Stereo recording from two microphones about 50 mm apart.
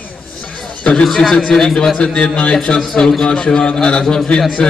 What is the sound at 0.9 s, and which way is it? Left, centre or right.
A man's voice, centre.